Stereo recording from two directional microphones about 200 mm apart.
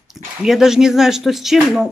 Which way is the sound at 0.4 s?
Centre (ahead or behind).